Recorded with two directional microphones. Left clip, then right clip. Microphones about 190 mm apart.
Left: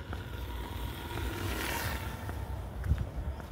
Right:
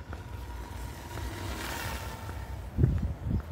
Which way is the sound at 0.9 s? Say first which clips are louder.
Left 2 dB; 15° right (ahead or behind).